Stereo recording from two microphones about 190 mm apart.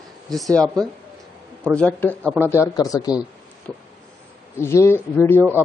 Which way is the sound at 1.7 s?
5° left (ahead or behind).